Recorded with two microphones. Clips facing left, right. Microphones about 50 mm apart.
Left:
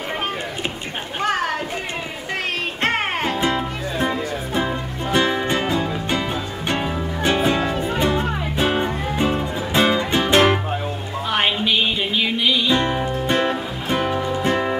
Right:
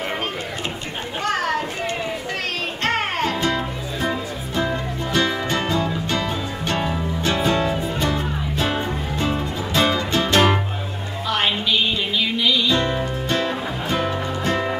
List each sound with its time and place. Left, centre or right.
2.8 s music: left